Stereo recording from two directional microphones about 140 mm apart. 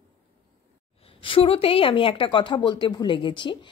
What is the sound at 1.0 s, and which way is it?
Speech, 40° left (ahead or behind).